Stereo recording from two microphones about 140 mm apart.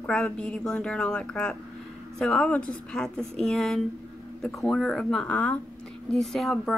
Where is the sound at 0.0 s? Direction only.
5° left (ahead or behind).